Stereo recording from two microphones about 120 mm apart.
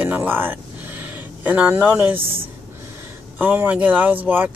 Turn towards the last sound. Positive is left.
turn(degrees=-15)  # may be behind; listen again after turning